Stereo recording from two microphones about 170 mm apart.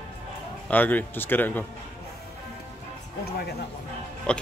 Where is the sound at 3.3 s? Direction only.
65° left (ahead or behind).